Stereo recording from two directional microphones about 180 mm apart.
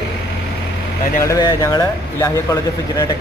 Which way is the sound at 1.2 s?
20° left (ahead or behind).